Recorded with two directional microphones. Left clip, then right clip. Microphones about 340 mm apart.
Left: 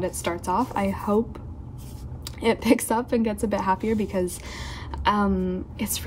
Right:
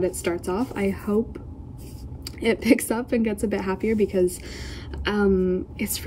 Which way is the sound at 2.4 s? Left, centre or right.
Left.